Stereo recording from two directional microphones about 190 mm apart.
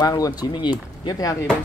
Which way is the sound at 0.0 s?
20° left (ahead or behind).